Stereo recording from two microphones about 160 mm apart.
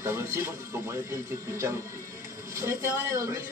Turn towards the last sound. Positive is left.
turn(degrees=-15)  # may be behind; listen again after turning